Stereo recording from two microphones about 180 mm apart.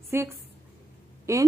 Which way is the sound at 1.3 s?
15° right (ahead or behind).